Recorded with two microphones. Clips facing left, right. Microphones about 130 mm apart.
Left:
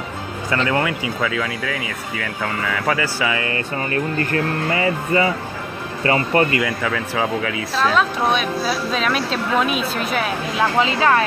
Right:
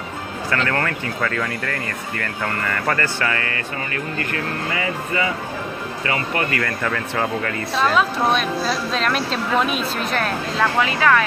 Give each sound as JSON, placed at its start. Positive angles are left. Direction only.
{"t": 0.7, "sound": "speech", "side_deg": 10}
{"t": 3.9, "sound": "speech", "side_deg": 35}
{"t": 6.6, "sound": "speech", "side_deg": 5}
{"t": 10.6, "sound": "speech", "side_deg": 25}